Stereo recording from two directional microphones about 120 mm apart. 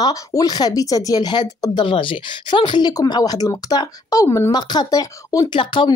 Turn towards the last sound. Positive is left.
turn(degrees=45)  # may be behind; listen again after turning